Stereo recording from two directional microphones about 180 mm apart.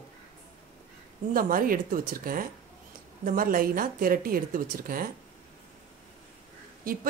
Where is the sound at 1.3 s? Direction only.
50° right (ahead or behind).